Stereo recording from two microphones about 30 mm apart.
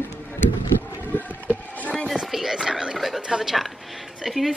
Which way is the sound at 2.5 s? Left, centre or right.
Right.